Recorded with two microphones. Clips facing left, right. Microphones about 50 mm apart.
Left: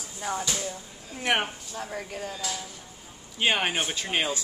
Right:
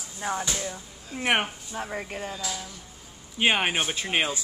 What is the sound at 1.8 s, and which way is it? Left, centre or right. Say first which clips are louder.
Speech: even; right.